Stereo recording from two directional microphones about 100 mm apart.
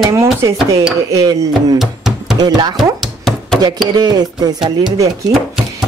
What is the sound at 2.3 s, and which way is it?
Speech, 45° right (ahead or behind).